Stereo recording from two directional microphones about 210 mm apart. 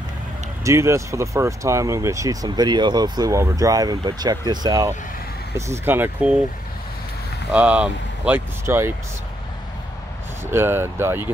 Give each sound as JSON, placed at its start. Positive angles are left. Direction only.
{"t": 0.7, "sound": "speech", "side_deg": -15}
{"t": 7.5, "sound": "speech", "side_deg": -5}
{"t": 10.4, "sound": "speech", "side_deg": -10}